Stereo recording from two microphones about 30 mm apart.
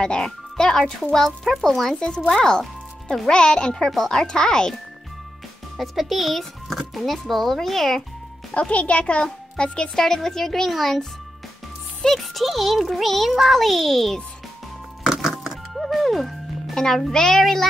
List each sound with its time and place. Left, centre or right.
0.0 s speech: left
2.0 s speech: left
3.8 s speech: centre
4.3 s speech: left
5.8 s a child's voice: centre
8.5 s a child's voice: left
9.2 s a child's voice: left
9.9 s a child's voice: centre
12.2 s a child's voice: centre
15.4 s music: centre
16.7 s a child's voice: centre